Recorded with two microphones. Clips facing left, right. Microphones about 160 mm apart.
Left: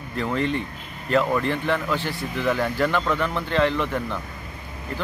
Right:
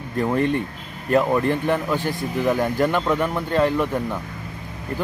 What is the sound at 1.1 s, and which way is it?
Speech, 15° right (ahead or behind).